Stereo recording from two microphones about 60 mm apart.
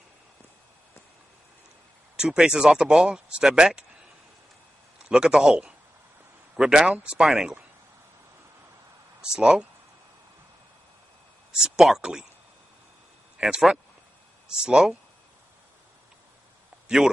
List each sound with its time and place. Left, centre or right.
2.1 s speech: centre
5.0 s a man's voice: centre
9.2 s speech: centre
11.5 s speech: centre
13.4 s speech: right
14.5 s speech: centre